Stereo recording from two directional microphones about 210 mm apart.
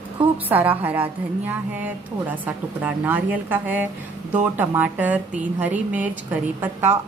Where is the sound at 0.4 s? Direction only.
10° right (ahead or behind).